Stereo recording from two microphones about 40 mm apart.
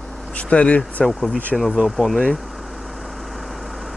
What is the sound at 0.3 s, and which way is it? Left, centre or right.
Speech, left.